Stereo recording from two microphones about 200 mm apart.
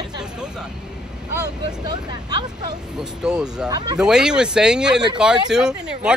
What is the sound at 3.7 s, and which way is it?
Speech, 20° right (ahead or behind).